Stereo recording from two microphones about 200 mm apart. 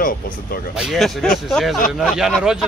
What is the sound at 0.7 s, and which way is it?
Speech, centre (ahead or behind).